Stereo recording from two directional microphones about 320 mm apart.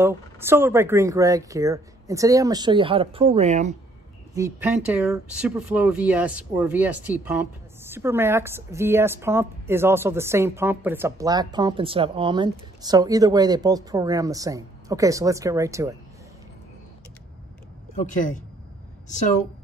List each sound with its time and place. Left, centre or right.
0.0 s speech: centre
4.4 s speech: centre
19.0 s a woman's voice: left